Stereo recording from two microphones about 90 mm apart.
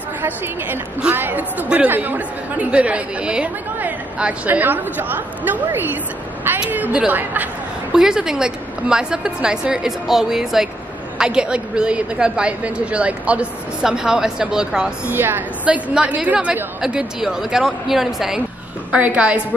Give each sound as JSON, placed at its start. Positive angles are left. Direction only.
{"t": 0.2, "sound": "a woman's voice", "side_deg": -20}
{"t": 7.1, "sound": "a woman's voice", "side_deg": -20}
{"t": 7.9, "sound": "a woman's voice", "side_deg": -5}
{"t": 15.0, "sound": "a woman's voice", "side_deg": -20}
{"t": 18.9, "sound": "a woman's voice", "side_deg": -15}